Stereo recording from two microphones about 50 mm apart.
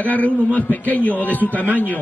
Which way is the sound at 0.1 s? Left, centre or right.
Left.